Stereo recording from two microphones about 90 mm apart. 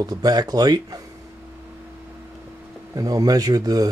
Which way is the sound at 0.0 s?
45° right (ahead or behind).